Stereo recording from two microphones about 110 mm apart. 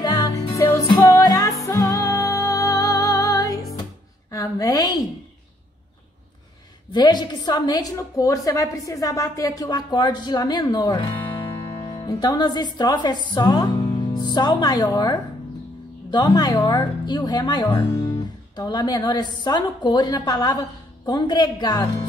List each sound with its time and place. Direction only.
0.0 s music: 40° left (ahead or behind)
0.6 s music: 25° left (ahead or behind)
4.3 s a sound: 30° left (ahead or behind)
6.9 s a woman's voice: 40° left (ahead or behind)